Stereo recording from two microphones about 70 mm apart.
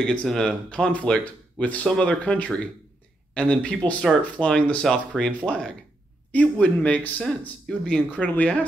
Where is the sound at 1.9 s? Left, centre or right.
Centre.